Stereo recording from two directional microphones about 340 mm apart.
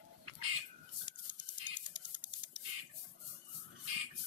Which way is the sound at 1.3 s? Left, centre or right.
Right.